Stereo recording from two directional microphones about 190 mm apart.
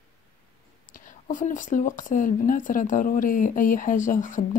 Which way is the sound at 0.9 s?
45° left (ahead or behind).